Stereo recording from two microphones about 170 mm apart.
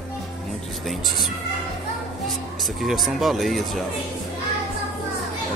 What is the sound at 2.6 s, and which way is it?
Speech, centre (ahead or behind).